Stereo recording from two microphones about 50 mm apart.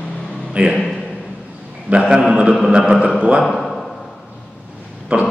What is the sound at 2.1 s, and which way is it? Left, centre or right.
Speech, centre.